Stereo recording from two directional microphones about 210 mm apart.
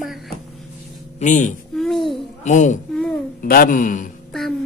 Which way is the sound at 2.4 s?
35° left (ahead or behind).